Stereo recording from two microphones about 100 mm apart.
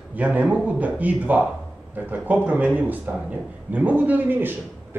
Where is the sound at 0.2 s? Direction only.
15° right (ahead or behind).